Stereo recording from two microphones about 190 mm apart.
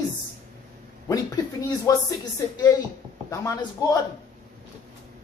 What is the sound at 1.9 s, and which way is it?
Speech, 15° left (ahead or behind).